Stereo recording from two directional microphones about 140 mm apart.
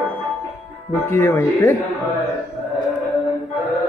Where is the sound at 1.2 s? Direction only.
20° left (ahead or behind).